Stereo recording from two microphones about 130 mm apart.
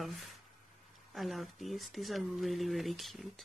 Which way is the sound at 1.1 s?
Centre (ahead or behind).